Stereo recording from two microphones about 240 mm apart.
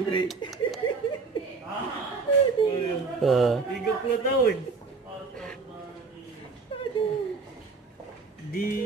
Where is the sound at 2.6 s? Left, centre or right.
Left.